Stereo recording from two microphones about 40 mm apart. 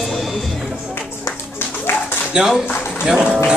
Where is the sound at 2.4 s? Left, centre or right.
Right.